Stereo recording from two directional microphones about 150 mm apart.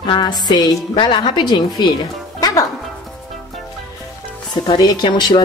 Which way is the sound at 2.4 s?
25° left (ahead or behind).